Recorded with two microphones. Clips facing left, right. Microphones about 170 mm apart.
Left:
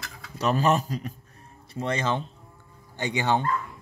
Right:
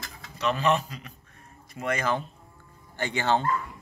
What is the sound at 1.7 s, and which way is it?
Speech, 30° left (ahead or behind).